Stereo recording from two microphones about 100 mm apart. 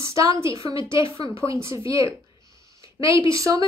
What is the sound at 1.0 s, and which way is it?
Speech, 60° left (ahead or behind).